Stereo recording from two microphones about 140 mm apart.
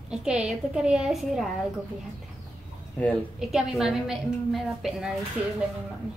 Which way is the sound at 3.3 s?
5° right (ahead or behind).